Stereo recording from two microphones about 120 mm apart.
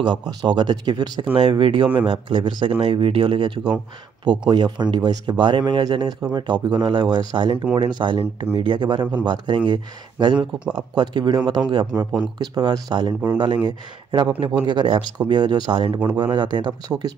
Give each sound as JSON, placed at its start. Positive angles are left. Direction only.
{"t": 0.0, "sound": "speech", "side_deg": -35}